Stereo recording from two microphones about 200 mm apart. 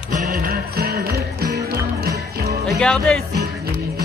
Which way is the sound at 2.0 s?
50° right (ahead or behind).